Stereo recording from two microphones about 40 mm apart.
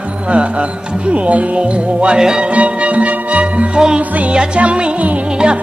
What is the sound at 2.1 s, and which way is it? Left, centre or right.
Music, centre.